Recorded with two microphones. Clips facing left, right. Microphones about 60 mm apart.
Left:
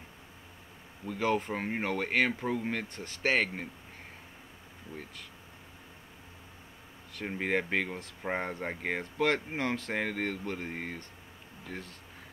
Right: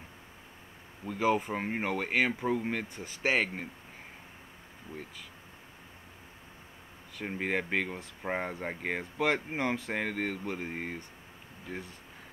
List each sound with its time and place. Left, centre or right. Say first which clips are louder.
1.0 s speech: right 2 dB; centre
7.2 s speech: left 1 dB; centre